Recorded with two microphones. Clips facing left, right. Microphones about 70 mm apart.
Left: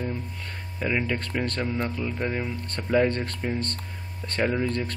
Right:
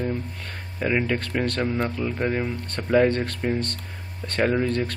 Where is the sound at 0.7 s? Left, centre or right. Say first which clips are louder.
Right 3 dB; centre.